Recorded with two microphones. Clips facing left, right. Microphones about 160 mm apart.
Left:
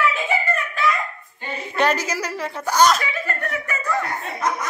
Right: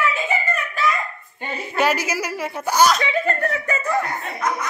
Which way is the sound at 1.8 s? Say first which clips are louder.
Even; 10° right (ahead or behind).